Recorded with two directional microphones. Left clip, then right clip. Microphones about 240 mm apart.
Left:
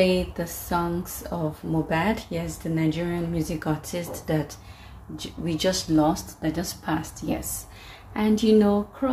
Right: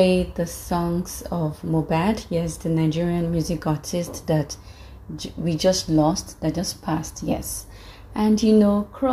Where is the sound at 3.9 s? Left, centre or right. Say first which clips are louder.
Right 4 dB; centre.